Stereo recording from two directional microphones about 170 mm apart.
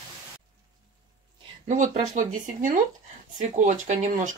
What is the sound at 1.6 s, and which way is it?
Speech, 45° right (ahead or behind).